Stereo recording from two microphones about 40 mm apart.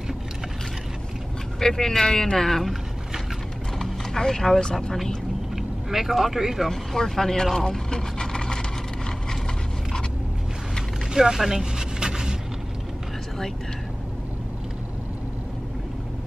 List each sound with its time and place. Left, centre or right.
1.6 s speech: centre
3.8 s horse: centre
5.6 s speech: centre
6.7 s speech: centre
11.1 s speech: centre
12.0 s vehicle: centre